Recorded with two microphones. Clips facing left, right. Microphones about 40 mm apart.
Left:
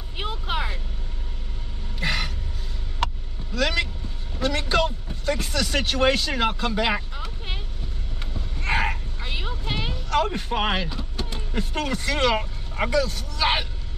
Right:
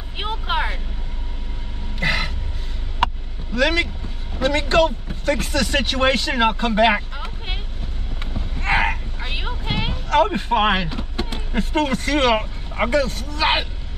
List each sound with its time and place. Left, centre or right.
0.2 s speech: right
2.0 s a sound: right
3.5 s a man's voice: right
8.3 s a sound: right
12.4 s vehicle: right
12.9 s a man's voice: right
13.4 s a man's voice: right